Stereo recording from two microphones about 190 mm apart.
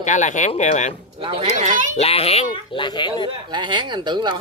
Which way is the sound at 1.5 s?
40° right (ahead or behind).